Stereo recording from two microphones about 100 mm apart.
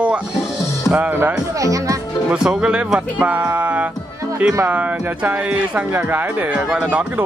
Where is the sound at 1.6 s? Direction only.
35° right (ahead or behind).